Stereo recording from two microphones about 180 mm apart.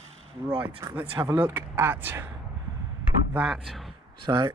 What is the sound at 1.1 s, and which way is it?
Speech, 20° right (ahead or behind).